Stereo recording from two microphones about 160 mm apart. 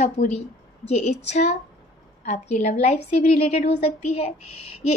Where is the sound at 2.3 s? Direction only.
50° left (ahead or behind).